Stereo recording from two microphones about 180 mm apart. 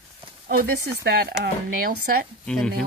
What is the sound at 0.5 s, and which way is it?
Speech, 60° right (ahead or behind).